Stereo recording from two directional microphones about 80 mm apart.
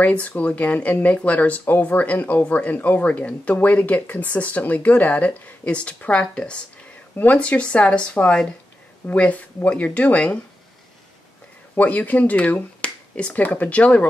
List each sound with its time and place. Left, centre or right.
0.0 s speech: centre
11.7 s speech: centre